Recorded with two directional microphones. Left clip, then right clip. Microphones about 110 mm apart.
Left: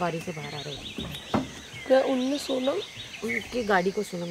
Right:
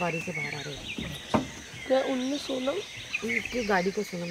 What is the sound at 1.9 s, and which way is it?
Speech, 45° left (ahead or behind).